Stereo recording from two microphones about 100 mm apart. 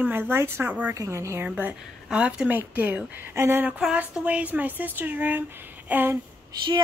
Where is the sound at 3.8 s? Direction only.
10° right (ahead or behind).